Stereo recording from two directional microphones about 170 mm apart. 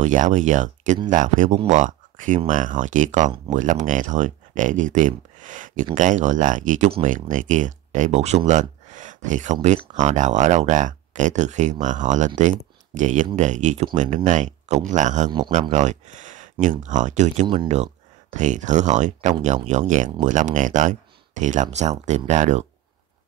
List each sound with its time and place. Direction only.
0.0 s speech: 45° right (ahead or behind)
18.3 s speech: 45° right (ahead or behind)